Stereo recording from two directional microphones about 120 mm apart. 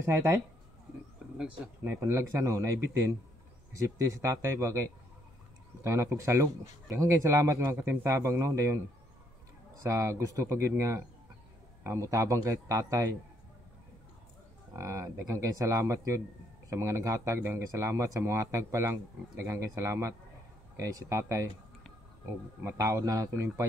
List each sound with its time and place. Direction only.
0.0 s speech: 20° right (ahead or behind)
2.0 s speech: 25° right (ahead or behind)
9.8 s speech: 25° right (ahead or behind)
14.8 s speech: 25° right (ahead or behind)
22.6 s speech: 25° right (ahead or behind)